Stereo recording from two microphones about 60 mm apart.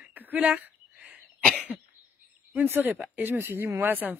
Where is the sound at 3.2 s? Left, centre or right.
Right.